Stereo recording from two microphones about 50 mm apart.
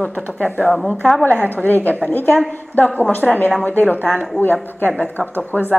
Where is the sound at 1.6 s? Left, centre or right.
Left.